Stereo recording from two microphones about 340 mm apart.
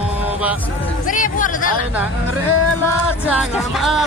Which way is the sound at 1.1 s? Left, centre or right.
Left.